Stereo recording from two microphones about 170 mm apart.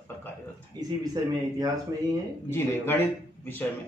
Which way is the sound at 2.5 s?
15° left (ahead or behind).